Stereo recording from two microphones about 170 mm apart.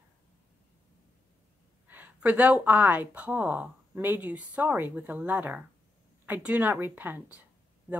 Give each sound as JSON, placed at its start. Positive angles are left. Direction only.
{"t": 1.9, "sound": "a woman's voice", "side_deg": -10}